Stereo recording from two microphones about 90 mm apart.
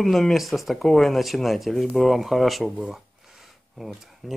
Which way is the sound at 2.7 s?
15° right (ahead or behind).